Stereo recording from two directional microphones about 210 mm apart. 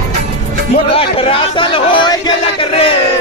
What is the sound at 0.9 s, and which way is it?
Music, 25° left (ahead or behind).